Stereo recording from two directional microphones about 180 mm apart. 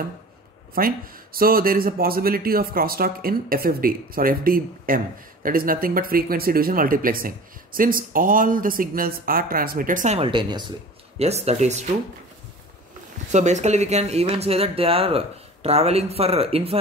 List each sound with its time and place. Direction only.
0.7 s speech: 55° right (ahead or behind)
13.3 s speech: 40° right (ahead or behind)